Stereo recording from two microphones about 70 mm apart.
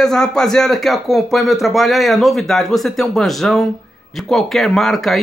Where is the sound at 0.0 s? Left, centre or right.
Centre.